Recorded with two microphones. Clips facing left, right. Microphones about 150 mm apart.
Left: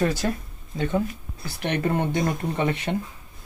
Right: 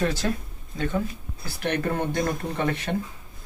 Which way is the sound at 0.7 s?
15° left (ahead or behind).